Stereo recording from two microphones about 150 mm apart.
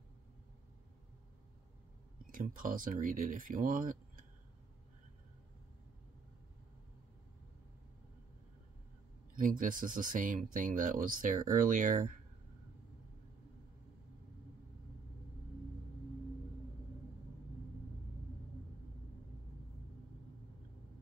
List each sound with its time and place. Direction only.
2.3 s speech: 65° right (ahead or behind)
9.3 s speech: 65° right (ahead or behind)